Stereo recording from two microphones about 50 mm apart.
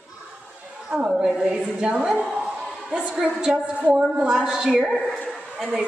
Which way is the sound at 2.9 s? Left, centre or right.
Right.